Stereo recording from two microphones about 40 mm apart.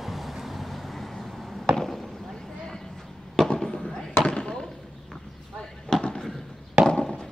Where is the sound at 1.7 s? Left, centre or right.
Centre.